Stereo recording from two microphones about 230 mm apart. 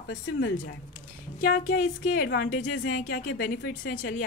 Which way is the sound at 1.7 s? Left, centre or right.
Left.